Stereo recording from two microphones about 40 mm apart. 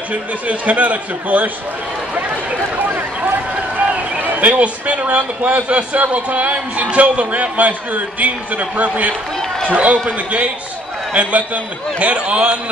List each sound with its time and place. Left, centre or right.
0.1 s a man's voice: right
2.8 s a sound: right
3.7 s a man's voice: right